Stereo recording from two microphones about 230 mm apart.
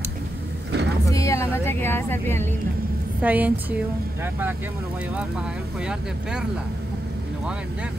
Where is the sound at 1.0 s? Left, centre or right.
Centre.